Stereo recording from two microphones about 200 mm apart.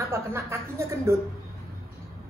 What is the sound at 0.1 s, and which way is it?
Speech, 10° right (ahead or behind).